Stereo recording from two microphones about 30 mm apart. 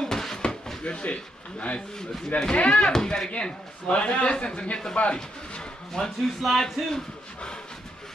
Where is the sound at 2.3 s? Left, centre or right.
Left.